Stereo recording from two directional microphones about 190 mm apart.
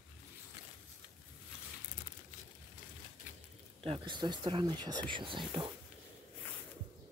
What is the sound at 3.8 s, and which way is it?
Speech, 25° right (ahead or behind).